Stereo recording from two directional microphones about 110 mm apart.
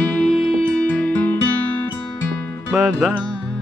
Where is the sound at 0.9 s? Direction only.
15° left (ahead or behind).